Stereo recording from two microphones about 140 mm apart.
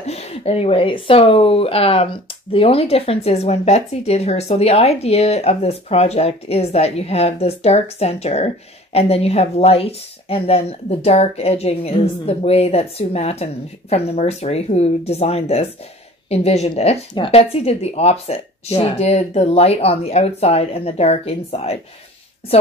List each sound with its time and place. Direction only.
0.0 s speech: 50° left (ahead or behind)